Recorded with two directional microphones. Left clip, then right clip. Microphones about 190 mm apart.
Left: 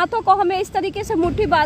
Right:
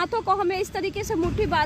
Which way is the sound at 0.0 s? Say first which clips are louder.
Left 7 dB; 35° left (ahead or behind).